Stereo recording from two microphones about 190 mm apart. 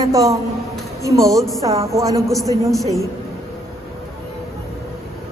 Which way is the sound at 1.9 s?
15° right (ahead or behind).